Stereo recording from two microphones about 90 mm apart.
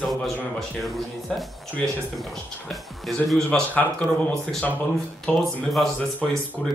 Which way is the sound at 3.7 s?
20° left (ahead or behind).